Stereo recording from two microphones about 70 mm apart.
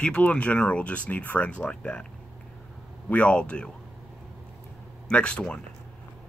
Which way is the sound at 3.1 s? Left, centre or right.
Centre.